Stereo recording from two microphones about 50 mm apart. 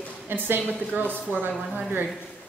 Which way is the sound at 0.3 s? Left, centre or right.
Right.